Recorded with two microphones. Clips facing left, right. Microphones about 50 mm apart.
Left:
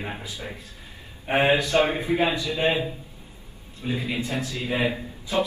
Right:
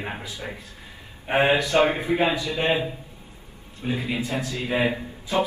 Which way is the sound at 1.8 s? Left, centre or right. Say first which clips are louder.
Right 1 dB; right.